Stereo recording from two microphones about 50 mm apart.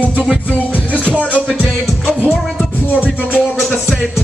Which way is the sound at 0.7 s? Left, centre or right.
Left.